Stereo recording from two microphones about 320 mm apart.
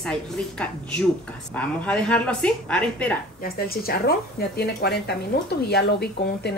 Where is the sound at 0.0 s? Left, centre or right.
Centre.